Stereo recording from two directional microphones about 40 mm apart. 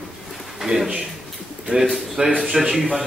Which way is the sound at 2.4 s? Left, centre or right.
Centre.